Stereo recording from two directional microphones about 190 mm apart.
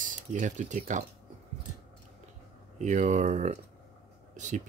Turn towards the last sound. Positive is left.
turn(degrees=-40)  # may be behind; listen again after turning